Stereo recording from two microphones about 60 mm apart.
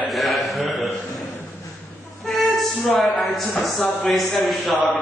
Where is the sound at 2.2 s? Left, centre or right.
Centre.